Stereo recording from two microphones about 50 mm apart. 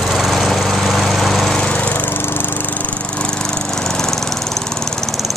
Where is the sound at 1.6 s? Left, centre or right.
Left.